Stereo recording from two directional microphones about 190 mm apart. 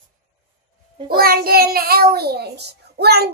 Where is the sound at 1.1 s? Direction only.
50° right (ahead or behind).